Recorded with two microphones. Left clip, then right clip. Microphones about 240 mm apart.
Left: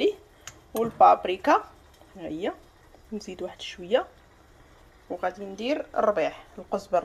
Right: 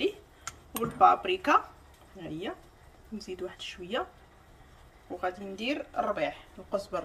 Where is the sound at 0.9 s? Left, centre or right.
Centre.